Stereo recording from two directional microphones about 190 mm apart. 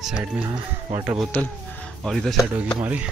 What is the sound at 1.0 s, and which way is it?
Speech, centre (ahead or behind).